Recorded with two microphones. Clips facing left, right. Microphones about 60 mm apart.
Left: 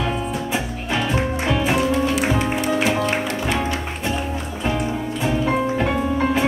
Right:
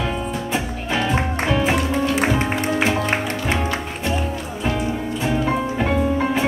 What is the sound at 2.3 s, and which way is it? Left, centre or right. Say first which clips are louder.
Music: even; right.